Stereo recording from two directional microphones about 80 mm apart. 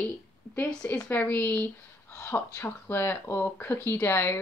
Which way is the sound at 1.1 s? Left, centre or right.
Left.